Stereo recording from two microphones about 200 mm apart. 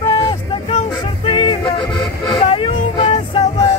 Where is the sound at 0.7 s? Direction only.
30° left (ahead or behind).